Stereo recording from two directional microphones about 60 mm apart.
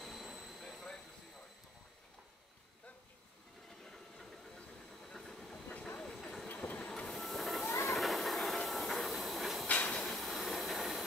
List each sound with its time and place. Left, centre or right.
0.0 s train: centre
0.6 s vehicle: centre
3.8 s a sound: centre
5.0 s steam: centre
5.7 s train: left
5.9 s train: centre
6.5 s train: left
6.8 s printer: centre
7.6 s train: left
7.9 s train: centre
9.7 s train: left
9.9 s train: centre